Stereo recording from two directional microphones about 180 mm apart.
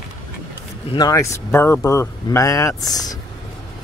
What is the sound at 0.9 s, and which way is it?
Speech, 20° left (ahead or behind).